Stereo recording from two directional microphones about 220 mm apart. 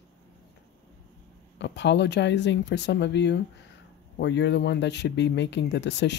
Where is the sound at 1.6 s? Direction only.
55° left (ahead or behind).